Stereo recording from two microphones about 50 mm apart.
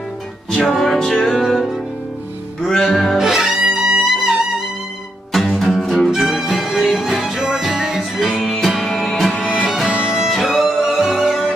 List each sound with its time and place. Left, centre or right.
0.7 s music: centre
3.2 s music: centre
5.3 s music: centre
9.4 s music: centre
10.3 s music: centre
11.1 s music: centre